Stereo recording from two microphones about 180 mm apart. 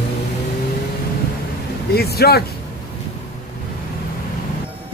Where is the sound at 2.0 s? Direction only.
60° left (ahead or behind).